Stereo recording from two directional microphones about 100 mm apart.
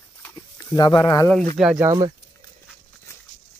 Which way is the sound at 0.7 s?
40° left (ahead or behind).